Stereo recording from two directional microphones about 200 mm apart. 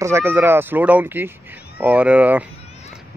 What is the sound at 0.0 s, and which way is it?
Speech, 10° right (ahead or behind).